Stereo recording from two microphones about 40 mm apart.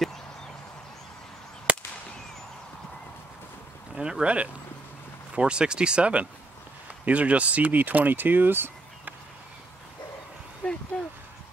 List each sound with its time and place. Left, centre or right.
1.7 s fireworks: right
4.0 s speech: right
10.9 s speech: left